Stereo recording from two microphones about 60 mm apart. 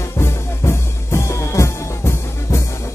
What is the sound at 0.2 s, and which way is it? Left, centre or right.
Music, left.